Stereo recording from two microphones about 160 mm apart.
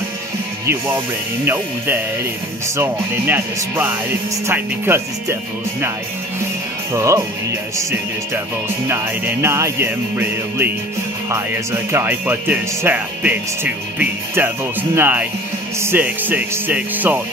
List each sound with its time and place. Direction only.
0.7 s speech: 10° right (ahead or behind)
6.9 s speech: 20° right (ahead or behind)
8.8 s speech: 15° right (ahead or behind)